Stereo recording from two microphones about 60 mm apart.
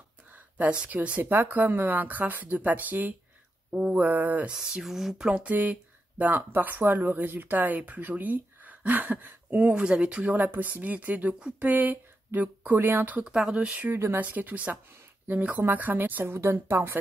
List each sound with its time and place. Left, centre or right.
0.3 s a sound: right
0.7 s speech: right
1.2 s speech: right
4.5 s speech: centre
5.3 s speech: right
9.8 s speech: centre
10.2 s speech: right
13.2 s speech: centre
13.8 s speech: right
14.1 s speech: right